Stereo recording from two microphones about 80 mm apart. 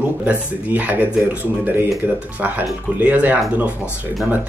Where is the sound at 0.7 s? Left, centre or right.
Right.